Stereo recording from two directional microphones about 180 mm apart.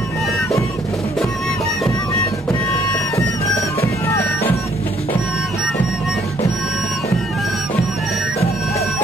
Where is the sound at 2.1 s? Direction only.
20° left (ahead or behind).